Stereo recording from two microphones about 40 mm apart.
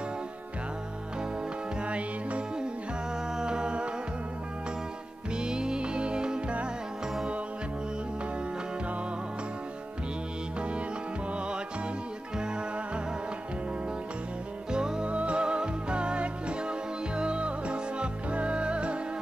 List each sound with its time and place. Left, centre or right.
1.9 s music: right
3.3 s music: right
5.4 s music: right
14.7 s music: centre
15.0 s music: right